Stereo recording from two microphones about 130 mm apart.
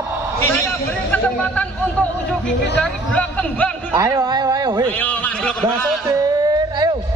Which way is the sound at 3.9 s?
25° right (ahead or behind).